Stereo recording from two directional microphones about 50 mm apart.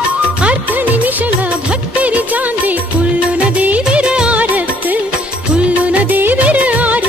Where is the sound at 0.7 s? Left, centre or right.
Right.